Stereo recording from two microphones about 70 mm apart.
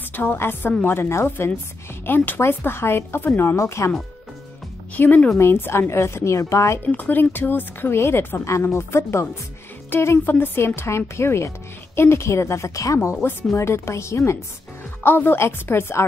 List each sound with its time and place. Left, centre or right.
0.1 s speech: left
4.9 s speech: left
5.4 s speech: left
6.8 s speech: left
15.0 s speech: left